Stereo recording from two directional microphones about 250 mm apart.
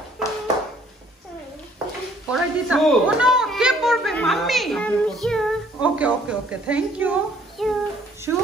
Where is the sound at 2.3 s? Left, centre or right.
Centre.